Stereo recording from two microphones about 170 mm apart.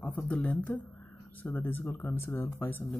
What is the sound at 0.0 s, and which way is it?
Speech, 10° left (ahead or behind).